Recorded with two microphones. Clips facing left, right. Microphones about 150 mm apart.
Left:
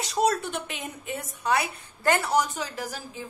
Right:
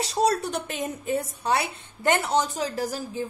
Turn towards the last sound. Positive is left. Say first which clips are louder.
# right 5 dB
turn(degrees=-40)  # may be behind; listen again after turning